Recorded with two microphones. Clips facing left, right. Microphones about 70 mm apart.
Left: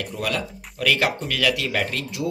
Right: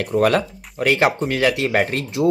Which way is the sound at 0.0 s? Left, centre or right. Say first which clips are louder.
Right 10 dB; right.